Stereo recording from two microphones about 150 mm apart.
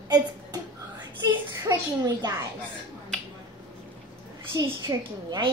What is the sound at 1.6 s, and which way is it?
Speech, 20° right (ahead or behind).